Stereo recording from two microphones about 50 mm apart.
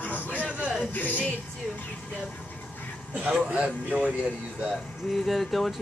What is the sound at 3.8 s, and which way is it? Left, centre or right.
Speech, right.